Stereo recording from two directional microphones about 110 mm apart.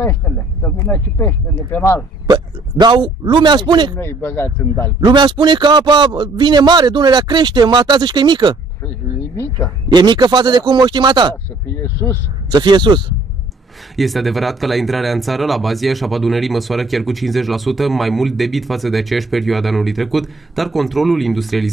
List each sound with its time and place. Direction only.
0.0 s speech: 20° left (ahead or behind)
2.2 s speech: 40° right (ahead or behind)
3.9 s speech: 20° left (ahead or behind)
5.0 s a man's voice: 45° right (ahead or behind)
9.9 s a man's voice: 40° right (ahead or behind)
11.7 s speech: 20° left (ahead or behind)
12.4 s speech: 40° right (ahead or behind)
13.9 s speech: centre (ahead or behind)